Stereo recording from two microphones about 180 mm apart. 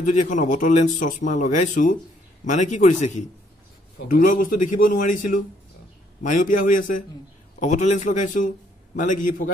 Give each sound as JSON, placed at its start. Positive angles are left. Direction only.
{"t": 0.0, "sound": "speech", "side_deg": 45}